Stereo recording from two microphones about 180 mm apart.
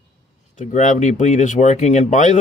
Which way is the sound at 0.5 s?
45° left (ahead or behind).